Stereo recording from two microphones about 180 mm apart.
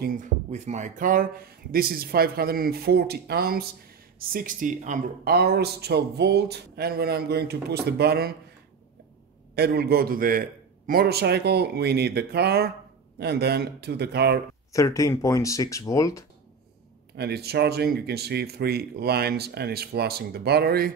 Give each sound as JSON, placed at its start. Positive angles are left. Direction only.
{"t": 0.0, "sound": "speech", "side_deg": -45}
{"t": 9.6, "sound": "speech", "side_deg": -60}
{"t": 14.7, "sound": "speech", "side_deg": 20}
{"t": 17.2, "sound": "speech", "side_deg": -65}